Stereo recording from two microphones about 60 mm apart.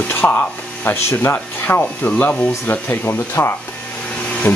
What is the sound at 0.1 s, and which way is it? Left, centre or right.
Speech, left.